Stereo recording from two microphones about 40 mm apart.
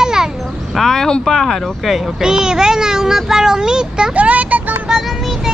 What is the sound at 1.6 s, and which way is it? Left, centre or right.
Speech, centre.